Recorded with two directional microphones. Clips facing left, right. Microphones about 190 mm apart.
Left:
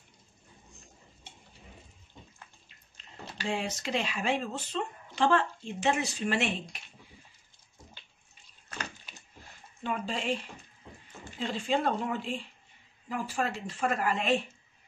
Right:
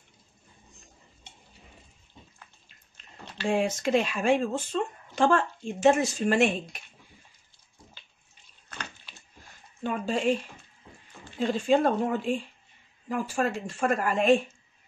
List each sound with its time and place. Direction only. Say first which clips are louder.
3.4 s speech: right 8 dB; 50° right (ahead or behind)
9.8 s speech: right 6 dB; 45° right (ahead or behind)
11.3 s speech: right 7 dB; 45° right (ahead or behind)